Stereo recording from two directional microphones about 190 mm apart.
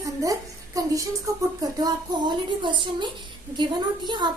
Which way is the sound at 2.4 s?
25° right (ahead or behind).